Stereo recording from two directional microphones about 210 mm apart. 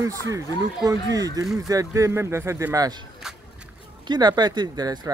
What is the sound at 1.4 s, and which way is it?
Speech, centre (ahead or behind).